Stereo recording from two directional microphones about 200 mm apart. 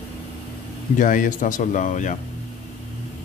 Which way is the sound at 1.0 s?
40° left (ahead or behind).